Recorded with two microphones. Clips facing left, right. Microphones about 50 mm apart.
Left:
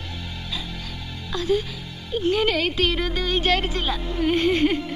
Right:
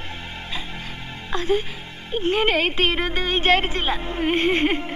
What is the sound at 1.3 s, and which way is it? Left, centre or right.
A woman's voice, right.